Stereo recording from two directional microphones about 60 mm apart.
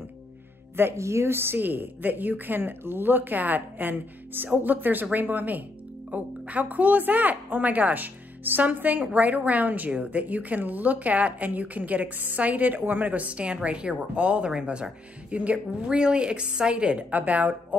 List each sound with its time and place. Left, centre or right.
0.9 s a woman's voice: right